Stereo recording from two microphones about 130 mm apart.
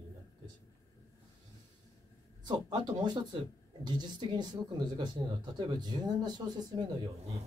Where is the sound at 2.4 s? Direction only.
35° right (ahead or behind).